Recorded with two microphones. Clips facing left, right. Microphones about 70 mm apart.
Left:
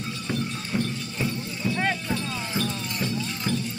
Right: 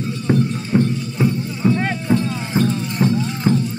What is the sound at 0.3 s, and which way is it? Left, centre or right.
Music, right.